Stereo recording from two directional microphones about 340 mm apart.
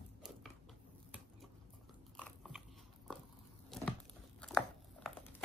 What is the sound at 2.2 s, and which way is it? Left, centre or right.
Biting, centre.